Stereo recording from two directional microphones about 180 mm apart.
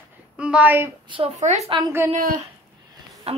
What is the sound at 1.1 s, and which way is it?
A woman's voice, 35° right (ahead or behind).